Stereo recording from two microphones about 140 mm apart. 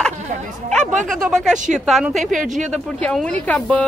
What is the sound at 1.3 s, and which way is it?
Speech, centre (ahead or behind).